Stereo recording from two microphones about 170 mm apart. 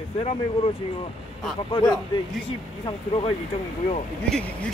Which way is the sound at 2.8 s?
30° left (ahead or behind).